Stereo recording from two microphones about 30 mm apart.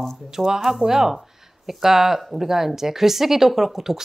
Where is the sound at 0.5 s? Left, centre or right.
Centre.